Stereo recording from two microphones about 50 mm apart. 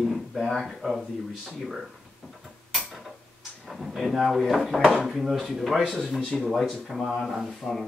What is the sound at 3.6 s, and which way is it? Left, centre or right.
Speech, centre.